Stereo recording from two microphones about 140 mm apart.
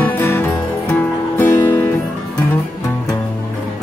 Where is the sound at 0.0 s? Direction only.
15° left (ahead or behind).